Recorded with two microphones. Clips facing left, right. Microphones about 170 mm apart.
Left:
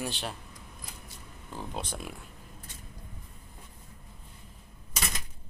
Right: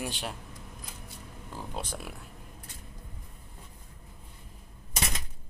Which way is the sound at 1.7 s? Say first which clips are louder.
Even; 10° right (ahead or behind).